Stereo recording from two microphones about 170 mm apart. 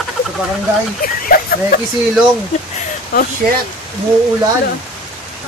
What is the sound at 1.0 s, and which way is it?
Speech, 55° left (ahead or behind).